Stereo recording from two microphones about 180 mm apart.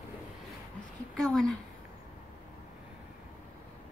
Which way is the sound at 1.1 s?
5° left (ahead or behind).